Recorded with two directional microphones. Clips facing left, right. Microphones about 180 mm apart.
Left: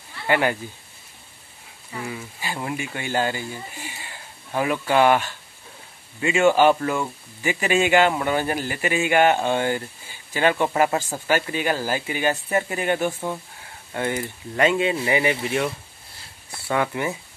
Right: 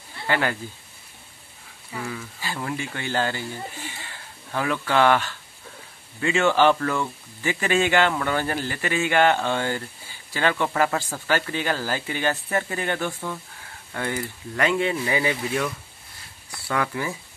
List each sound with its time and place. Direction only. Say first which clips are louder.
0.3 s speech: left 3 dB; 15° left (ahead or behind)
2.0 s speech: left 2 dB; 15° left (ahead or behind)
16.4 s a sound: left 3 dB; 25° left (ahead or behind)